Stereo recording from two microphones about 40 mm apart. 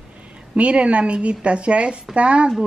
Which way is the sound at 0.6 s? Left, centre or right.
Right.